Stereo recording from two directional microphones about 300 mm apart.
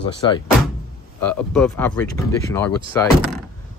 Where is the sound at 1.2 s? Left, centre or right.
Centre.